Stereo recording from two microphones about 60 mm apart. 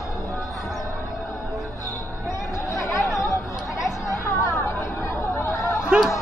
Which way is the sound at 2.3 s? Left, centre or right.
Left.